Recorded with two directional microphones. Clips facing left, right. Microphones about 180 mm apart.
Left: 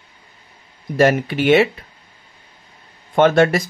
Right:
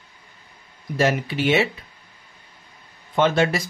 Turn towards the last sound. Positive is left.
turn(degrees=50)  # may be behind; listen again after turning